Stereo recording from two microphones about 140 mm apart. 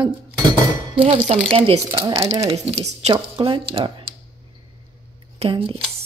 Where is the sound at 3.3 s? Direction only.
35° right (ahead or behind).